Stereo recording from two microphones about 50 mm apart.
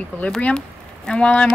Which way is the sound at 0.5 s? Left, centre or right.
Centre.